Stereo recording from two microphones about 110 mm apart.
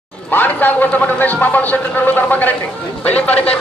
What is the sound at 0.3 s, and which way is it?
A man's voice, 15° left (ahead or behind).